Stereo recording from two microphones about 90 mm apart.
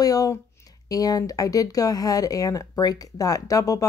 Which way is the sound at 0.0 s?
40° left (ahead or behind).